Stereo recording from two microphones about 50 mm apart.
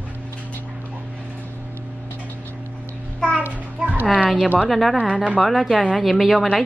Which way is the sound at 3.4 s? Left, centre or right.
Right.